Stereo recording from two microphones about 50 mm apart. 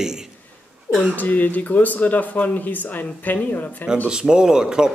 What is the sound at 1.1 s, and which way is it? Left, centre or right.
Speech, left.